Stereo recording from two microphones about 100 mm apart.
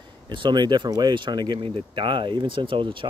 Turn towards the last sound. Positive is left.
turn(degrees=-55)  # may be behind; listen again after turning